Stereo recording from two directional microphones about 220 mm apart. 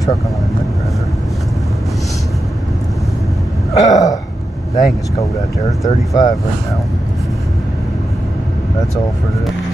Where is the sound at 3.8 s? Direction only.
15° left (ahead or behind).